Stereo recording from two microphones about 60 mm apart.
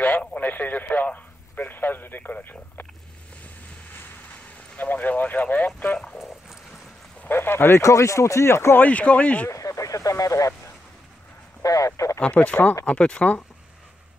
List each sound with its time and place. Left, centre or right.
0.4 s radio: left
3.9 s vehicle: left
7.2 s speech: left
7.8 s speech: left
8.7 s speech: left
9.5 s a sound: left
11.6 s a sound: left
12.2 s speech: left